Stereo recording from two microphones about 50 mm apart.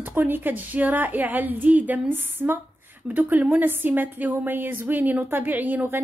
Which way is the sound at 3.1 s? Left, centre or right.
Right.